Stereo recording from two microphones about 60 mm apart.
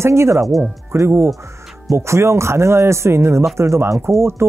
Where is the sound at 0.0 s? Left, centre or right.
Right.